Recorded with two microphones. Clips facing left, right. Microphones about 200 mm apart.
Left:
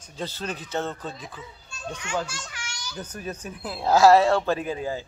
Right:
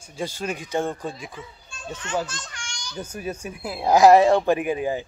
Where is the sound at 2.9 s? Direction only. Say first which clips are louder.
Right 4 dB; 10° right (ahead or behind).